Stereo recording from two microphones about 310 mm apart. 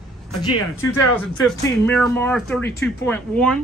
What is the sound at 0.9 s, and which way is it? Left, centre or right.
A man's voice, centre.